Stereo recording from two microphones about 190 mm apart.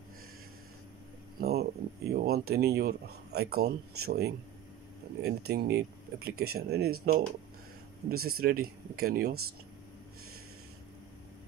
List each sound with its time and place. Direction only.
1.4 s speech: 55° right (ahead or behind)